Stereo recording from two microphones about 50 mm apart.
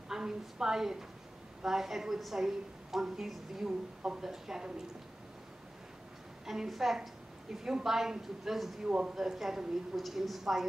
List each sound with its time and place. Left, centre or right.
0.1 s a woman's voice: centre
6.4 s a woman's voice: centre
8.8 s a woman's voice: centre
9.1 s a woman's voice: centre